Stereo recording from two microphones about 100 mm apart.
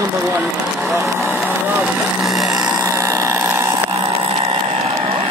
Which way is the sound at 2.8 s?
30° right (ahead or behind).